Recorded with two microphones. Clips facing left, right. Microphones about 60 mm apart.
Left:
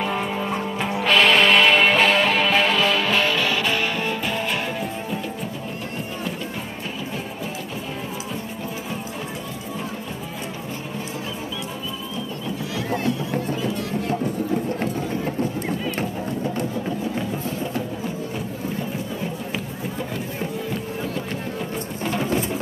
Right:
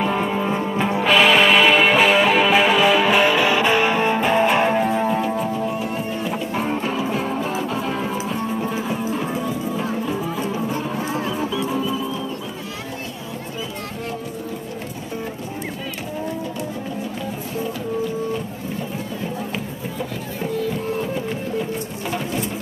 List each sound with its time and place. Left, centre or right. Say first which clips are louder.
0.0 s music: right 4 dB; centre; by 4.8 s right
4.8 s music: right 9 dB; right